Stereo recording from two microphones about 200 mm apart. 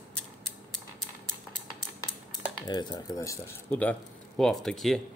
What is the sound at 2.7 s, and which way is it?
Speech, 20° left (ahead or behind).